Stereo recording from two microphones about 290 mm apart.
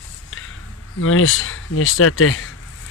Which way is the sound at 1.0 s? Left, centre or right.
Left.